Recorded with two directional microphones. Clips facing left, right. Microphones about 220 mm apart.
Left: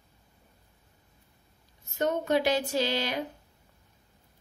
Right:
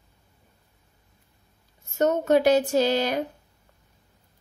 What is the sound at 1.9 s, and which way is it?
Speech, 45° right (ahead or behind).